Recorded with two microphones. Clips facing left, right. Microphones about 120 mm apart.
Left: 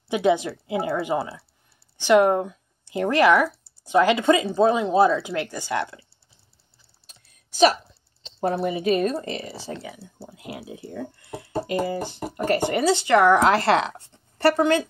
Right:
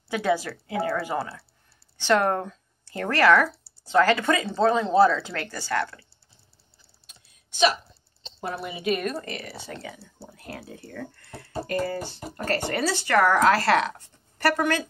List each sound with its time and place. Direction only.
0.1 s speech: 20° left (ahead or behind)
7.1 s typing: 40° left (ahead or behind)
8.4 s speech: 40° left (ahead or behind)
9.8 s speech: 10° left (ahead or behind)